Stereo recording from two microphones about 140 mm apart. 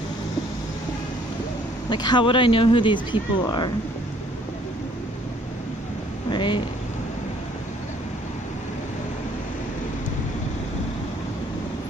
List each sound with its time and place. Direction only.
1.9 s speech: 35° left (ahead or behind)
6.3 s speech: 35° left (ahead or behind)